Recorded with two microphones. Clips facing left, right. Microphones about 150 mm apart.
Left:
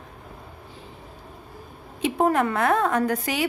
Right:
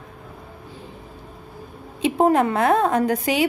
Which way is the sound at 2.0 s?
25° right (ahead or behind).